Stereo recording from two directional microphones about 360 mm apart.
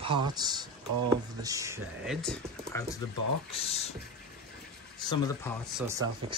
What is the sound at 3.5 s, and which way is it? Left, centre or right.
Speech, centre.